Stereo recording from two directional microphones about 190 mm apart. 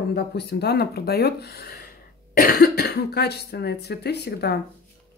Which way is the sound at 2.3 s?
55° left (ahead or behind).